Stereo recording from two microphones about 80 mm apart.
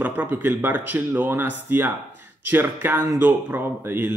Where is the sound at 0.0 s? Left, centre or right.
Right.